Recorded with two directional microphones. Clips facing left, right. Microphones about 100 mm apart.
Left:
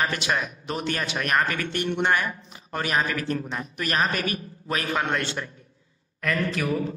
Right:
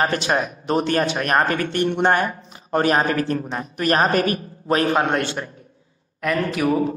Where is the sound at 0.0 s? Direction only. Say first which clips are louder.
Right 5 dB; 40° right (ahead or behind).